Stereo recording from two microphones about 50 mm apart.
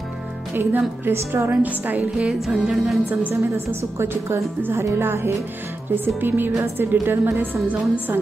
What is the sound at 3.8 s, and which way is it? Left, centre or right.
A woman's voice, right.